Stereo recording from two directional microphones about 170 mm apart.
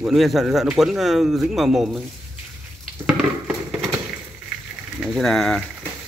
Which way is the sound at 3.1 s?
5° right (ahead or behind).